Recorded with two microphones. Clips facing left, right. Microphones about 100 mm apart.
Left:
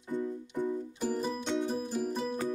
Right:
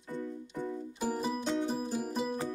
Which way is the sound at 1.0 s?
5° right (ahead or behind).